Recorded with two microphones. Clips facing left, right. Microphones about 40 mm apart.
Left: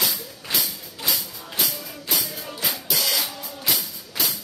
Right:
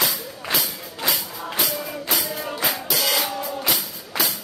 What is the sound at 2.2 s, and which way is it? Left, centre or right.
Music, right.